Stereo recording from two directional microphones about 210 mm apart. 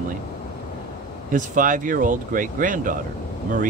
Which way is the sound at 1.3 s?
40° right (ahead or behind).